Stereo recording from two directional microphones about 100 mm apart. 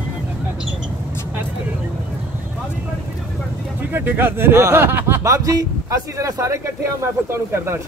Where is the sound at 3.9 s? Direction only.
20° right (ahead or behind).